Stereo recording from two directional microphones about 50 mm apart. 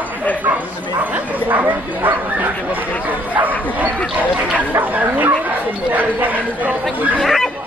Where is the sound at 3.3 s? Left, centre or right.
Right.